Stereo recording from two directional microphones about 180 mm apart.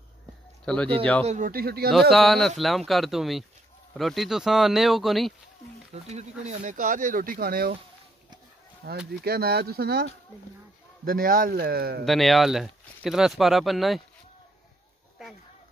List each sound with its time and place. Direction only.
0.7 s speech: 5° left (ahead or behind)
1.2 s speech: 45° right (ahead or behind)
1.9 s speech: centre (ahead or behind)
6.0 s speech: 40° right (ahead or behind); by 7.7 s 55° right (ahead or behind)
8.8 s speech: 60° right (ahead or behind)
12.0 s speech: centre (ahead or behind)